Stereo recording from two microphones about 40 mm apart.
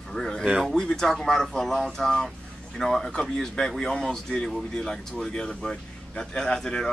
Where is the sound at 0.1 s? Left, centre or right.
Centre.